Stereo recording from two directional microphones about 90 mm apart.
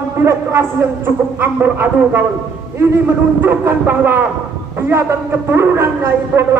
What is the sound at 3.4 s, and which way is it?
Speech, 25° right (ahead or behind).